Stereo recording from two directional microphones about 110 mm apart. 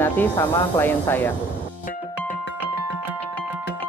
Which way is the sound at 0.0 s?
20° left (ahead or behind).